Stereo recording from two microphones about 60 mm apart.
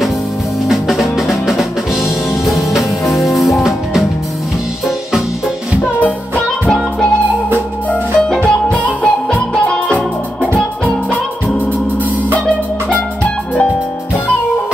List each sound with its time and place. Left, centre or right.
0.7 s music: centre
5.8 s music: left
6.4 s music: centre
8.4 s music: centre
12.4 s music: left